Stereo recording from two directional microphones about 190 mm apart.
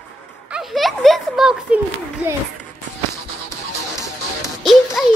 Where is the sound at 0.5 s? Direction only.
Centre (ahead or behind).